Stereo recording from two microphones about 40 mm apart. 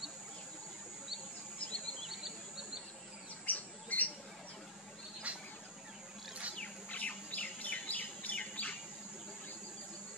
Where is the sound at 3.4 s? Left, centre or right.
Left.